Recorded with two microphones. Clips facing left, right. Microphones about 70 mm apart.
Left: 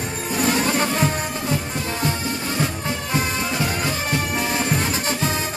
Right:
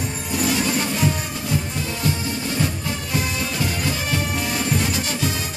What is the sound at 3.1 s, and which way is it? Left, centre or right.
Music, left.